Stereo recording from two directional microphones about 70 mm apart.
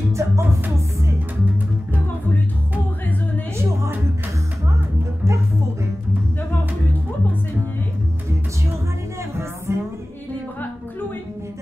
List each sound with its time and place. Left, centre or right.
0.1 s music: right
9.7 s music: right